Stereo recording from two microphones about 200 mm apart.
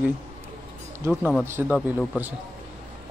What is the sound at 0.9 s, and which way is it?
Speech, 10° right (ahead or behind).